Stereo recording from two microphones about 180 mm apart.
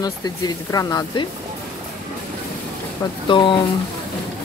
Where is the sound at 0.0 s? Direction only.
20° left (ahead or behind).